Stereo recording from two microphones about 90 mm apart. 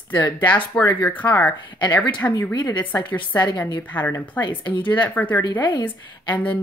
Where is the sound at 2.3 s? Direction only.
40° left (ahead or behind).